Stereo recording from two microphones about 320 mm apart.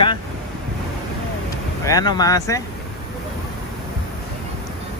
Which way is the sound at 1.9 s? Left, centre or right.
Centre.